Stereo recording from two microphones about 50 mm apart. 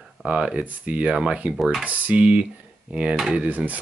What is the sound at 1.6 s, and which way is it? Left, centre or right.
Speech, centre.